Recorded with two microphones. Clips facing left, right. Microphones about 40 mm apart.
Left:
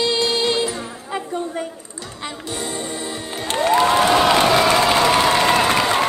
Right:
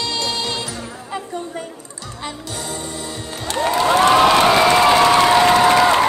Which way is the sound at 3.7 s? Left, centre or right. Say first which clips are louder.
Left 1 dB; left.